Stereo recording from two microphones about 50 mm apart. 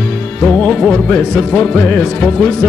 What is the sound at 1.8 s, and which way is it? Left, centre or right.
Music, left.